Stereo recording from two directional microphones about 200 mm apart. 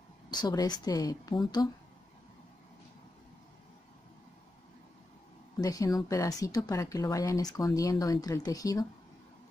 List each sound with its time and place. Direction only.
0.3 s a woman's voice: 20° left (ahead or behind)
5.6 s speech: 20° left (ahead or behind)